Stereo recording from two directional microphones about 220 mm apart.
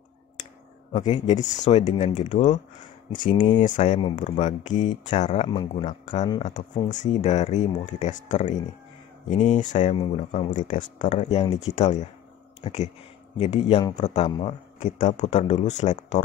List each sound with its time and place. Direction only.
0.9 s speech: 30° left (ahead or behind)
6.2 s speech: 20° left (ahead or behind)
6.5 s speech: 35° left (ahead or behind)